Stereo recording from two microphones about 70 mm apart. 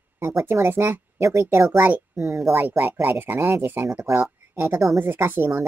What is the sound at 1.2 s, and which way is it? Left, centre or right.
Speech, right.